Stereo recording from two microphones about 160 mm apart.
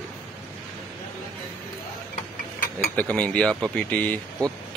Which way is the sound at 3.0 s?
10° left (ahead or behind).